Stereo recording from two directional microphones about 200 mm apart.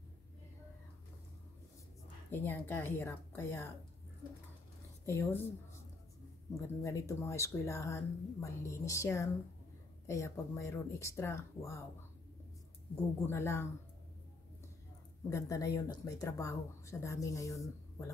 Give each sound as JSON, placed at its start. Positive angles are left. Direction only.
{"t": 2.3, "sound": "speech", "side_deg": 10}
{"t": 5.0, "sound": "speech", "side_deg": 15}
{"t": 6.5, "sound": "speech", "side_deg": 15}
{"t": 13.3, "sound": "speech", "side_deg": 10}
{"t": 15.2, "sound": "speech", "side_deg": 15}